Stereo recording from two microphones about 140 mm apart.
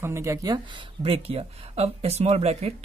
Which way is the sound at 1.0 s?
45° right (ahead or behind).